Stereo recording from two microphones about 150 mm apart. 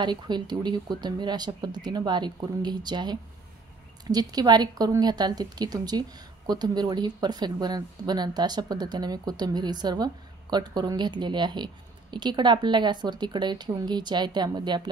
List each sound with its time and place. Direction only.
0.0 s a woman's voice: 30° right (ahead or behind)